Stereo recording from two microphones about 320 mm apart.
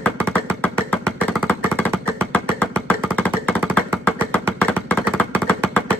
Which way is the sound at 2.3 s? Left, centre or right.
Centre.